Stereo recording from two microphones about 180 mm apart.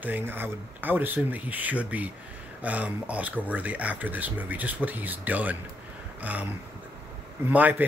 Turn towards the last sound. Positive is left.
turn(degrees=-10)  # may be behind; listen again after turning